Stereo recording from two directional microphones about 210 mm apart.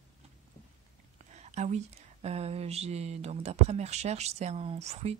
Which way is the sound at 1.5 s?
30° right (ahead or behind).